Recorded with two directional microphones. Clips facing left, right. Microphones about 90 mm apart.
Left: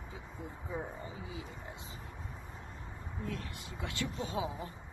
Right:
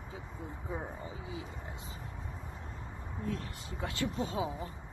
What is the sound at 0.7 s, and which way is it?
Speech, 30° right (ahead or behind).